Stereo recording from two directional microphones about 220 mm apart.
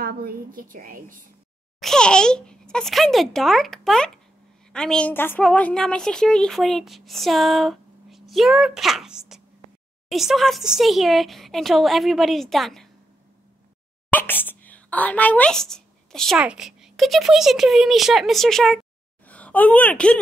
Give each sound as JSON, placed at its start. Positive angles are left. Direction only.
{"t": 0.0, "sound": "a woman's voice", "side_deg": -40}
{"t": 1.8, "sound": "a woman's voice", "side_deg": 5}
{"t": 14.1, "sound": "speech", "side_deg": 10}